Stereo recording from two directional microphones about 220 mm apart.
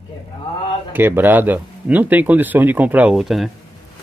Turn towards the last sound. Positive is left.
turn(degrees=0)  # may be behind; listen again after turning